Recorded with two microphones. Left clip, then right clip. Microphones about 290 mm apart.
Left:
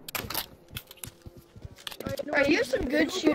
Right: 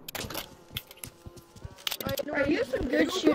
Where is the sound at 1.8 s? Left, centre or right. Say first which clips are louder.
Right 3 dB; centre.